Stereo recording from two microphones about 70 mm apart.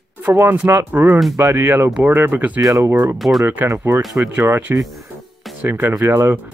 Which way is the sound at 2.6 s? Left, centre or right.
Right.